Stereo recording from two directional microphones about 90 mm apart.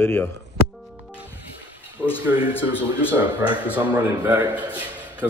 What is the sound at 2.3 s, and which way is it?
Speech, 30° right (ahead or behind).